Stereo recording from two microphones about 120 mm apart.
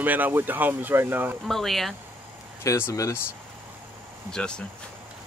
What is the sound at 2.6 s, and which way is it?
Speech, 25° left (ahead or behind).